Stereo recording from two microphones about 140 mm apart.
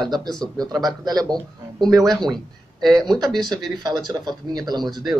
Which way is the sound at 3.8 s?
25° right (ahead or behind).